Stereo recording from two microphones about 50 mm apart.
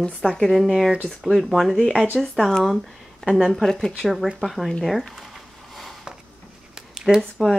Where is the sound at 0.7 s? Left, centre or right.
Centre.